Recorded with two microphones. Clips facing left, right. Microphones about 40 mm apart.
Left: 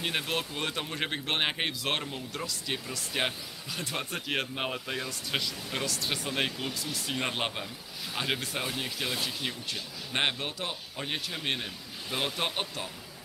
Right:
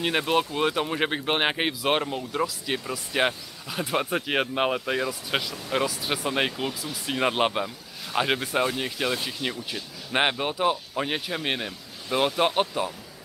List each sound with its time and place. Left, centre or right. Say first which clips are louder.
0.0 s speech: right 8 dB; centre